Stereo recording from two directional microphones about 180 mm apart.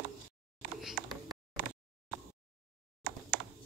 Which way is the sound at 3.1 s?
60° right (ahead or behind).